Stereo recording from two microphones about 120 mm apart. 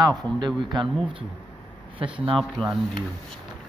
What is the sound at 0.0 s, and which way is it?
Speech, 35° right (ahead or behind).